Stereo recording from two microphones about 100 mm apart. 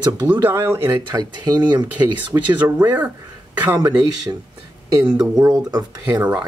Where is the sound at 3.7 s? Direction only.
40° right (ahead or behind).